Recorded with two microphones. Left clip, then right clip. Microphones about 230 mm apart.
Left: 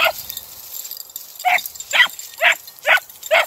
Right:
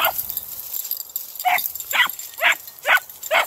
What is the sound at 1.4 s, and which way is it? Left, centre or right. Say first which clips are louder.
Dog: left 3 dB; centre.